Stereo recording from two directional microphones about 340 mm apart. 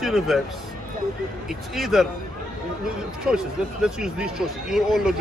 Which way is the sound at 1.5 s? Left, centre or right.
Centre.